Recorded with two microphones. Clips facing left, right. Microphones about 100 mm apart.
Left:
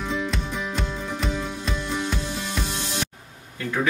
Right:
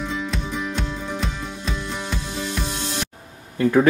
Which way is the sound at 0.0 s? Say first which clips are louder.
Even; centre (ahead or behind).